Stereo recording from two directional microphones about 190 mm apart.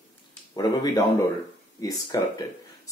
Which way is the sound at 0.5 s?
20° left (ahead or behind).